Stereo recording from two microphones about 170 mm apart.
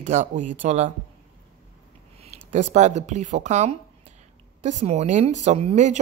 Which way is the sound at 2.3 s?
40° right (ahead or behind).